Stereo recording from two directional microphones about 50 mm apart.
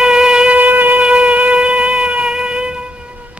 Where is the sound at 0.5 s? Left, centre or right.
Right.